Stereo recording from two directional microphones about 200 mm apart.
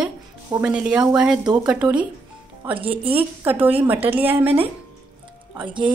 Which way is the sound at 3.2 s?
10° right (ahead or behind).